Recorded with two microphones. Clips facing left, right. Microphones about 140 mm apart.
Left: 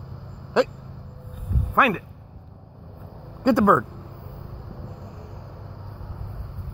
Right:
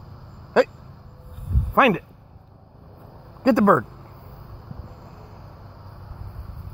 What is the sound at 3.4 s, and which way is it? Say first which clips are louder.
Speech: right 1 dB; 55° right (ahead or behind).